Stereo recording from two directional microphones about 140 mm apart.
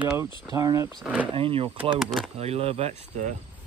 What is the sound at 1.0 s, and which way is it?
Speech, 10° right (ahead or behind).